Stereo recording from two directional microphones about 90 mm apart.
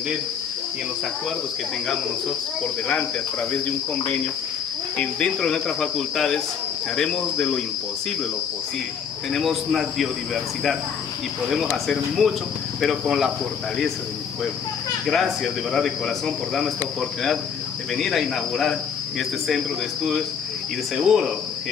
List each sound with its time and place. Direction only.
2.6 s cricket: 15° left (ahead or behind)
9.3 s cricket: centre (ahead or behind)
15.0 s cricket: centre (ahead or behind)
17.9 s cricket: 5° left (ahead or behind)